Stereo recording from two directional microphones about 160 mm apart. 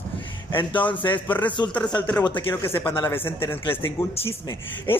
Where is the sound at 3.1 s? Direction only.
15° left (ahead or behind).